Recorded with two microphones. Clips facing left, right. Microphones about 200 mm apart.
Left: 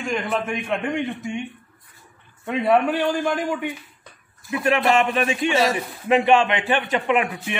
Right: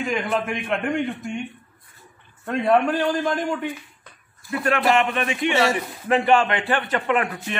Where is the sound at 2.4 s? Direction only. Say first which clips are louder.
Even; 5° left (ahead or behind).